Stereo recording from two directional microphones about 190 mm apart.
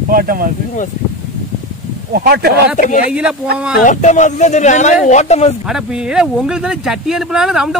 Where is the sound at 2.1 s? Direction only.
55° right (ahead or behind).